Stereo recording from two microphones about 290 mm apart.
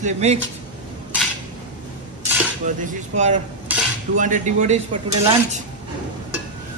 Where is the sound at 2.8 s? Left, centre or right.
Right.